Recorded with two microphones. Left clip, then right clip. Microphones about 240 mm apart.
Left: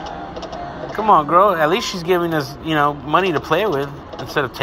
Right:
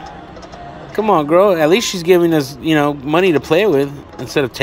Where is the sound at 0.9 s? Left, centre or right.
Right.